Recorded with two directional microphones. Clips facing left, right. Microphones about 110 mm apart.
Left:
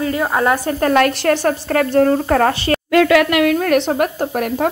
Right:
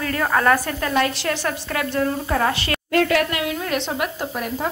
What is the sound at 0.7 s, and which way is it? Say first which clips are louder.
Speech: left 7 dB; 55° left (ahead or behind).